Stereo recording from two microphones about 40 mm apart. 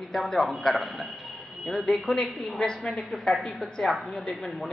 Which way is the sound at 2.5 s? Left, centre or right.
Centre.